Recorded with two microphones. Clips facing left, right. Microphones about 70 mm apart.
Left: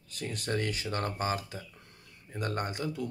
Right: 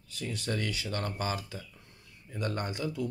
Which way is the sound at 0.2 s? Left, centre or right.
Left.